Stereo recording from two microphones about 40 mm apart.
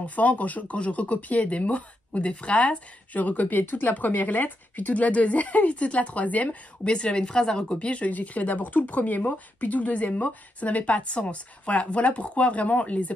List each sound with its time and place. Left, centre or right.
0.0 s speech: left
6.9 s speech: left